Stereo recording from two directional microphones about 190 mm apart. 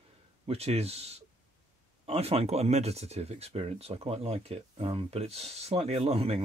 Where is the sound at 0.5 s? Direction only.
35° right (ahead or behind).